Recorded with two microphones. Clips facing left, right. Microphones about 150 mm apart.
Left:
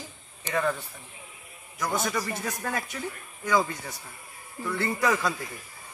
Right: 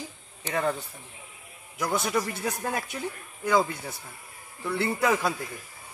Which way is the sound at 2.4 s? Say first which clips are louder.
Right 2 dB; 20° right (ahead or behind).